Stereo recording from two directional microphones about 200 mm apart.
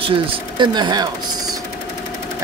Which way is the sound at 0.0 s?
25° right (ahead or behind).